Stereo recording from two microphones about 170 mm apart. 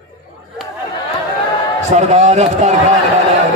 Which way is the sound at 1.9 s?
40° right (ahead or behind).